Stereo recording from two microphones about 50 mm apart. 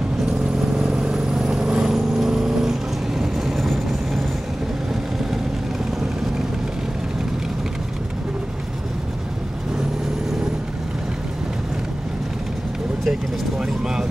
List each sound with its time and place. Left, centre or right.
0.3 s vehicle: centre